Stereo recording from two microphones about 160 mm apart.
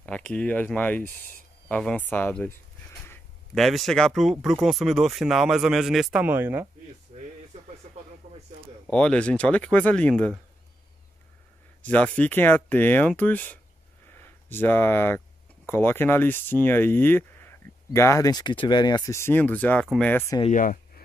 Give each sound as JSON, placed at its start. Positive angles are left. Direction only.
{"t": 0.0, "sound": "speech", "side_deg": 5}
{"t": 3.5, "sound": "speech", "side_deg": 0}
{"t": 8.8, "sound": "speech", "side_deg": 5}
{"t": 11.8, "sound": "speech", "side_deg": 10}
{"t": 20.5, "sound": "a sound", "side_deg": 60}